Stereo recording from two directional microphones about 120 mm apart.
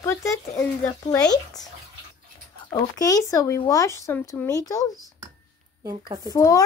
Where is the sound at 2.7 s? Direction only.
30° left (ahead or behind).